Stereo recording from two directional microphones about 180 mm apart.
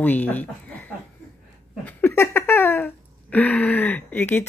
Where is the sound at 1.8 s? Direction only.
10° left (ahead or behind).